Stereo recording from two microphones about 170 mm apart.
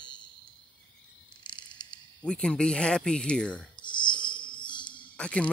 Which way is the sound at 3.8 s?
25° left (ahead or behind).